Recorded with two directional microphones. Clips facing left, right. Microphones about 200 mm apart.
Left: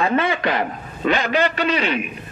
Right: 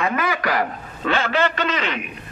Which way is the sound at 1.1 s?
15° left (ahead or behind).